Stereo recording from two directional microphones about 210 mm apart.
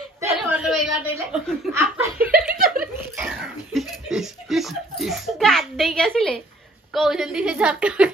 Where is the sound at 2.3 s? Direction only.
45° right (ahead or behind).